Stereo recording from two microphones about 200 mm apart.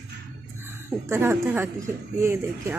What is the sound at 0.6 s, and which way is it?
A woman's voice, 10° right (ahead or behind).